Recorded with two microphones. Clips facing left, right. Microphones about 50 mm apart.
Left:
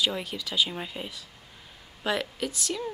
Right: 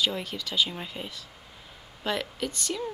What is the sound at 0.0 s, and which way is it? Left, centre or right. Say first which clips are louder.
Speech: even; centre.